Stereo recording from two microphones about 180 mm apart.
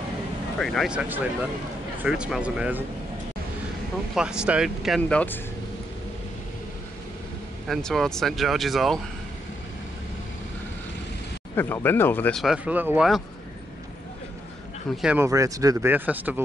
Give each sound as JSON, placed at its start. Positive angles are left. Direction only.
{"t": 0.6, "sound": "speech", "side_deg": 0}
{"t": 4.1, "sound": "speech", "side_deg": -5}
{"t": 7.6, "sound": "speech", "side_deg": 0}
{"t": 11.5, "sound": "speech", "side_deg": 10}
{"t": 15.0, "sound": "speech", "side_deg": -5}
{"t": 15.2, "sound": "speech", "side_deg": -20}